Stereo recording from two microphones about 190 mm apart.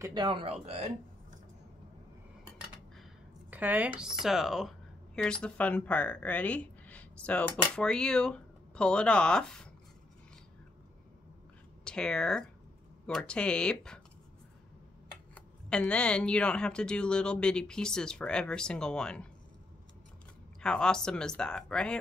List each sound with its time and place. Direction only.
0.0 s speech: 25° right (ahead or behind)
3.4 s a sound: 10° right (ahead or behind)
4.0 s speech: centre (ahead or behind)
11.8 s speech: 5° left (ahead or behind)
15.3 s speech: 5° left (ahead or behind)
20.6 s speech: 5° left (ahead or behind)